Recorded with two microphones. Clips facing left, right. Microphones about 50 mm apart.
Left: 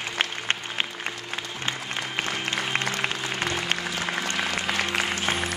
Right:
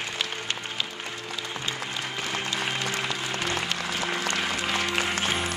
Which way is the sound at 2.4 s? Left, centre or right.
Left.